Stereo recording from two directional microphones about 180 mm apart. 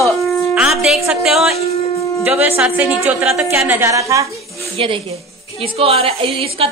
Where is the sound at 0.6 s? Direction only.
5° right (ahead or behind).